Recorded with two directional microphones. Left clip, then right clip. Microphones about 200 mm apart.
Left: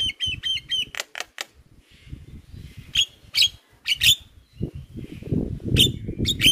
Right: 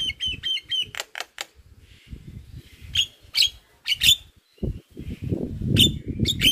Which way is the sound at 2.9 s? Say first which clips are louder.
Left 1 dB; 20° left (ahead or behind).